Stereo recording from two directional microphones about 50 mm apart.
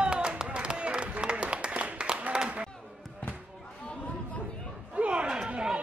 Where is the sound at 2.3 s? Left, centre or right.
Centre.